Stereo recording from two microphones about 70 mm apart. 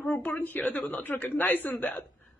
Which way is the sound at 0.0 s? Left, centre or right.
Left.